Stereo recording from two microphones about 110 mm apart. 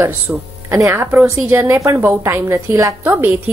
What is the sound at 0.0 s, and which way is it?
Speech, 20° right (ahead or behind).